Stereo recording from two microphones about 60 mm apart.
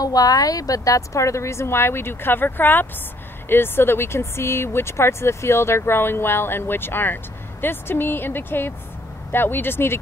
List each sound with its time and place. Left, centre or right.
0.0 s speech: left